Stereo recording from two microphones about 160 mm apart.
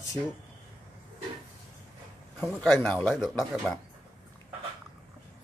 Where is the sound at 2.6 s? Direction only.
10° left (ahead or behind).